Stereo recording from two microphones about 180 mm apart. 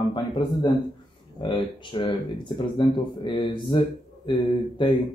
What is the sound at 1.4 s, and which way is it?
Speech, 25° left (ahead or behind).